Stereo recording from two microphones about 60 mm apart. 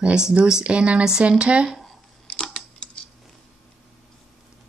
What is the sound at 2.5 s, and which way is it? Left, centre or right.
Coin, centre.